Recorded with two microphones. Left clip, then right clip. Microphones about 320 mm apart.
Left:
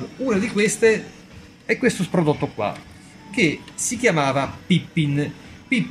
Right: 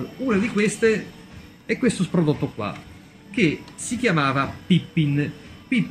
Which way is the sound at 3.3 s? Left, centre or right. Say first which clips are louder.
Left 2 dB; centre.